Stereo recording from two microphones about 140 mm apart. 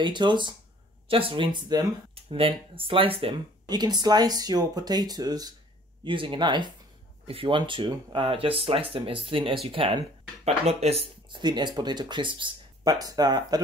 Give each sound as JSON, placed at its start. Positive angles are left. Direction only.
{"t": 0.0, "sound": "speech", "side_deg": -35}
{"t": 11.2, "sound": "speech", "side_deg": -35}